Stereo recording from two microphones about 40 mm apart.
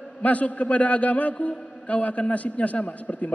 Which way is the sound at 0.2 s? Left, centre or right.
Left.